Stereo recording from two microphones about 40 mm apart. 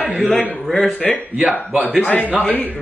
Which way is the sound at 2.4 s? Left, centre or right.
Left.